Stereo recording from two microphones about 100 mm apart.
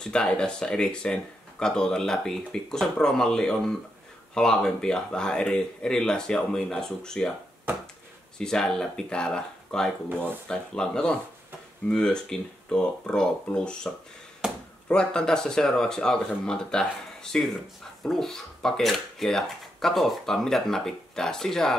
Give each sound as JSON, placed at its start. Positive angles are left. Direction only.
{"t": 0.0, "sound": "speech", "side_deg": 10}
{"t": 8.4, "sound": "speech", "side_deg": 5}
{"t": 14.4, "sound": "speech", "side_deg": -5}
{"t": 14.9, "sound": "speech", "side_deg": 10}